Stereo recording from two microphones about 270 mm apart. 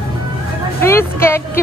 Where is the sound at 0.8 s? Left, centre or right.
Centre.